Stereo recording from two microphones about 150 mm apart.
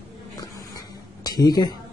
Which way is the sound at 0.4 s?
25° left (ahead or behind).